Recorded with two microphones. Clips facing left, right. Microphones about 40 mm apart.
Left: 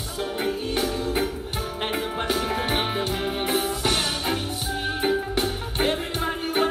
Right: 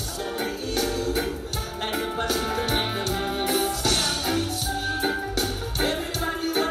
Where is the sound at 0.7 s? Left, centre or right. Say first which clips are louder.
Right 2 dB; left.